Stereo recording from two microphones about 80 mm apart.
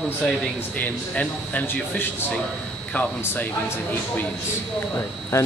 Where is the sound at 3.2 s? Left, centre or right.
Left.